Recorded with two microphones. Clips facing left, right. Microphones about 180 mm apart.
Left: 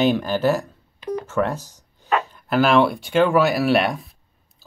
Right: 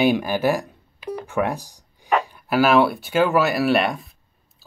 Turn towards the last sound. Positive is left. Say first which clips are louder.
# even
turn(degrees=0)  # may be behind; listen again after turning